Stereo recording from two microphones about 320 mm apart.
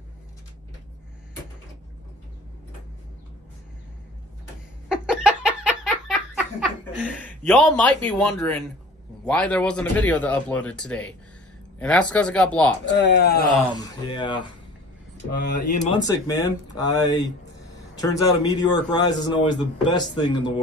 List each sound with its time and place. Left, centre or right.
4.8 s a sound: centre
9.2 s speech: centre
12.9 s speech: left
13.7 s speech: centre
15.5 s speech: left
16.3 s speech: centre